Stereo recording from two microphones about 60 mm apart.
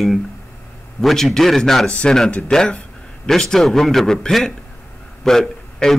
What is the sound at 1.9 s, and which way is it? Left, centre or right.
A man's voice, left.